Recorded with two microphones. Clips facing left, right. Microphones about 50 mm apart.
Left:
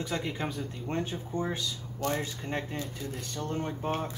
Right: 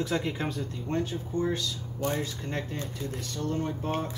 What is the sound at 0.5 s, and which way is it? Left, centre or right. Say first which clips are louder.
Speech: right 2 dB; centre.